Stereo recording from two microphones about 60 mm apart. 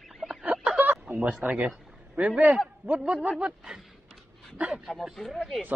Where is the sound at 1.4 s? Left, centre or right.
Right.